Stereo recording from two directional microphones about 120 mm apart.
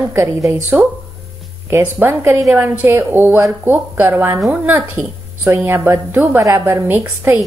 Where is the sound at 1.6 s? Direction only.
20° right (ahead or behind).